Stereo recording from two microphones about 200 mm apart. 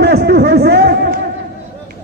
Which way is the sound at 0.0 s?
55° right (ahead or behind).